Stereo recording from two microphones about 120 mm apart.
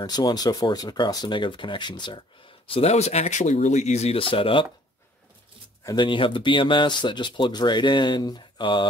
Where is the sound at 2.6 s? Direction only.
50° left (ahead or behind).